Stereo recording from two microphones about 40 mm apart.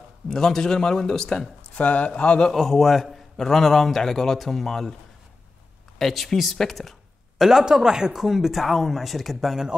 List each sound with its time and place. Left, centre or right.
0.3 s a man's voice: centre
1.8 s speech: left
2.1 s a man's voice: left
2.5 s a man's voice: centre
5.9 s a man's voice: centre
7.3 s speech: centre